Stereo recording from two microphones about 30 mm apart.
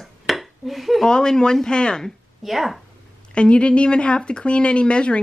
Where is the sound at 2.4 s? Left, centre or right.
Centre.